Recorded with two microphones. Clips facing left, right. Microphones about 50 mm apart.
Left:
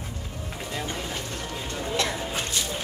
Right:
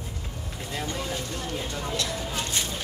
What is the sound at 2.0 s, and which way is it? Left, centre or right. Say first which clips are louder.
Speech: left 3 dB; left.